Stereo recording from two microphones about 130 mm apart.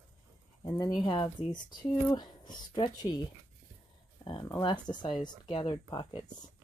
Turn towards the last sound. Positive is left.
turn(degrees=35)  # may be behind; listen again after turning